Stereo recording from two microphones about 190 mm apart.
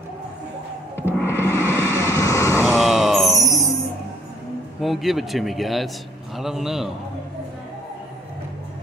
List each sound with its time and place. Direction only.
0.9 s music: 10° left (ahead or behind)
1.6 s vehicle: 15° left (ahead or behind)
2.6 s groan: centre (ahead or behind)
4.8 s a man's voice: centre (ahead or behind)